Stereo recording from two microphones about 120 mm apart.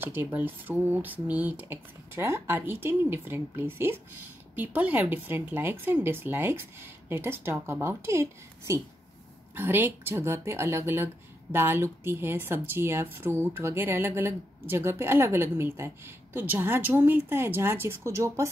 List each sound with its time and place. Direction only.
0.0 s speech: 15° right (ahead or behind)